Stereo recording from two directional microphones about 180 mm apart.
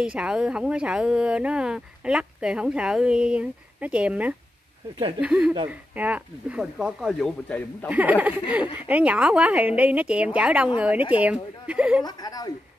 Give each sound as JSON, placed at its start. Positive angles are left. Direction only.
{"t": 0.0, "sound": "a woman's voice", "side_deg": -5}
{"t": 7.9, "sound": "a woman's voice", "side_deg": -10}
{"t": 12.0, "sound": "a woman's voice", "side_deg": 20}